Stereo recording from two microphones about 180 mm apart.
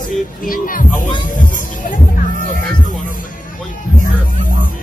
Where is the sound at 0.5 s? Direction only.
50° left (ahead or behind).